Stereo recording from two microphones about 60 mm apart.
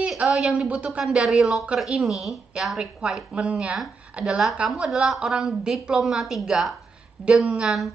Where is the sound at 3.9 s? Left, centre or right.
Right.